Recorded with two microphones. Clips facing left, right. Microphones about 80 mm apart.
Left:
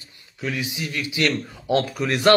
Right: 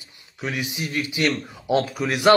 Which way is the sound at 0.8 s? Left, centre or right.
Right.